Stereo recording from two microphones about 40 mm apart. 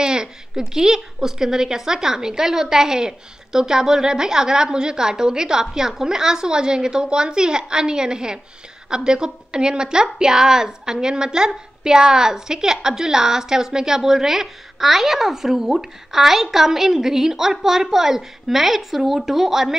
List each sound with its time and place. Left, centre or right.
0.0 s a woman's voice: centre